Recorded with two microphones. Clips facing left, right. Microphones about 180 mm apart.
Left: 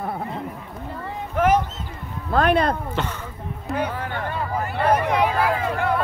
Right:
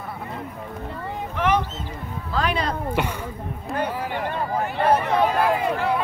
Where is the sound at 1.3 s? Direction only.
45° left (ahead or behind).